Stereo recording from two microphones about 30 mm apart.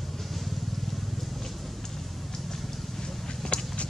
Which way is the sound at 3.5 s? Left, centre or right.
Left.